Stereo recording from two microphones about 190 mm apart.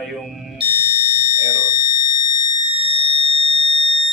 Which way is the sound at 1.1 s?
40° left (ahead or behind).